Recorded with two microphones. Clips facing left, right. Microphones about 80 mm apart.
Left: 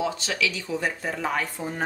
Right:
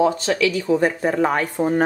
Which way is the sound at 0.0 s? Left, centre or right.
Right.